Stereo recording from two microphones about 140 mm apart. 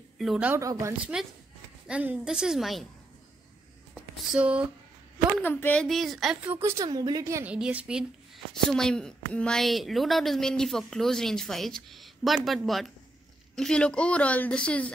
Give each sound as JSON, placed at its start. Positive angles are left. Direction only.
{"t": 0.2, "sound": "a woman's voice", "side_deg": 0}
{"t": 0.5, "sound": "a woman's voice", "side_deg": -20}
{"t": 1.9, "sound": "a woman's voice", "side_deg": -10}
{"t": 3.9, "sound": "a sound", "side_deg": -5}
{"t": 5.4, "sound": "a woman's voice", "side_deg": 15}
{"t": 6.4, "sound": "a woman's voice", "side_deg": -15}
{"t": 7.4, "sound": "a woman's voice", "side_deg": -10}
{"t": 8.5, "sound": "a woman's voice", "side_deg": 5}